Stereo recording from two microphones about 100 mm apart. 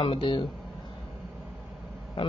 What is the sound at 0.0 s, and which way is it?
Speech, 60° left (ahead or behind).